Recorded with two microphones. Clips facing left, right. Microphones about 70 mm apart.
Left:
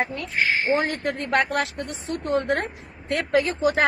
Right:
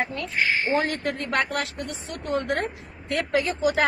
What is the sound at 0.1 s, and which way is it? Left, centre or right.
A woman's voice, left.